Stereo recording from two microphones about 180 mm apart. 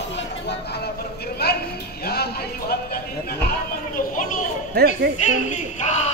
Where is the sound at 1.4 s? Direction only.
65° left (ahead or behind).